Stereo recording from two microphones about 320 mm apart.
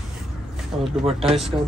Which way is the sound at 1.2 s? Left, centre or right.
Centre.